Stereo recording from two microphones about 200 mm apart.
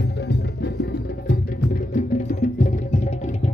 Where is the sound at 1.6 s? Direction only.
40° left (ahead or behind).